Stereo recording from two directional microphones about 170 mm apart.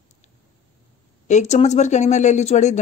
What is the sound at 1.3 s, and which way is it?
Speech, 40° left (ahead or behind).